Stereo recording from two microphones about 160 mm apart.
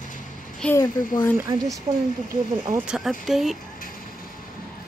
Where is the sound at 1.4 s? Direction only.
20° right (ahead or behind).